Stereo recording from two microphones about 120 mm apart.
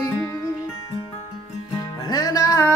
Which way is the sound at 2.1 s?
30° left (ahead or behind).